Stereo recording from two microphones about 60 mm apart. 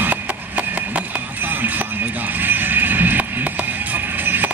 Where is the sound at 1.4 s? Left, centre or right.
Right.